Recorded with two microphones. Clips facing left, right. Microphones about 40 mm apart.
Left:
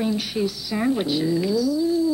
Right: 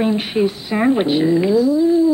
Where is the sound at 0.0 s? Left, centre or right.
Right.